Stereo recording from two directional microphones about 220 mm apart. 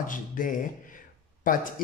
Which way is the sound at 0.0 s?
35° left (ahead or behind).